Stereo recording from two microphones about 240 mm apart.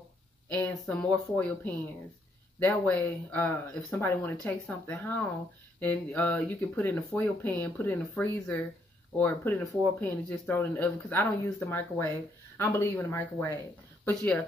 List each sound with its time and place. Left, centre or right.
0.5 s speech: centre